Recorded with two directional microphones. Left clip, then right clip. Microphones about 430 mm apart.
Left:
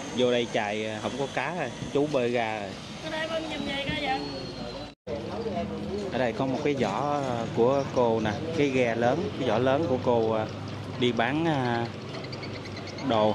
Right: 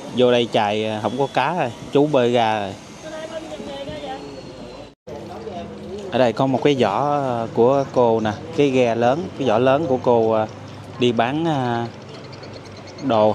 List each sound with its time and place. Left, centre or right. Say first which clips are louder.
0.2 s speech: right 9 dB; right
6.1 s speech: right 11 dB; centre